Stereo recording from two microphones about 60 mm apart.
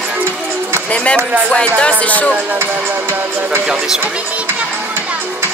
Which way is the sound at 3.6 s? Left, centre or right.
Centre.